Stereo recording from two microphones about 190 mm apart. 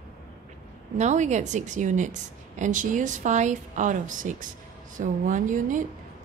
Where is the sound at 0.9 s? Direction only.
40° right (ahead or behind).